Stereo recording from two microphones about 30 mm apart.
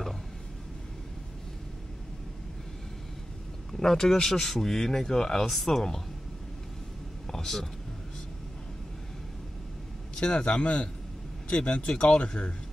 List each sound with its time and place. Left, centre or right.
3.7 s speech: centre
7.3 s speech: centre
10.2 s speech: left